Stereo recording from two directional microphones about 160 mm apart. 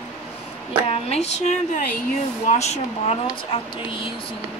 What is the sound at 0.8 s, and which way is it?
Speech, 40° left (ahead or behind).